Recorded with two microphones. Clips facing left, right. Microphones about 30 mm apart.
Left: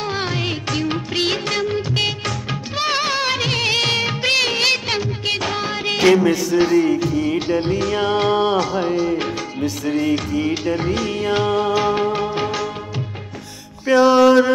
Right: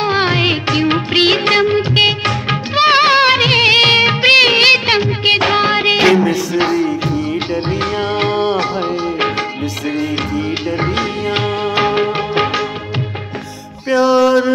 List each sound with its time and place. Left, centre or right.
0.0 s music of bollywood: right
6.7 s music: centre
7.6 s music: right
7.9 s music: right
13.9 s music: centre